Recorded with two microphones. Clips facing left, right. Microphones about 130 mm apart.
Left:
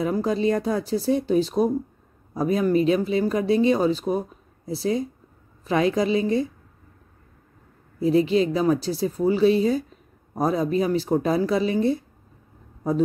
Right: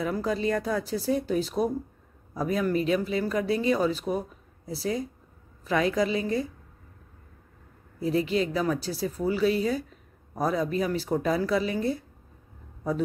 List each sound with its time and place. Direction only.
0.0 s speech: 25° left (ahead or behind)
8.0 s speech: 25° left (ahead or behind)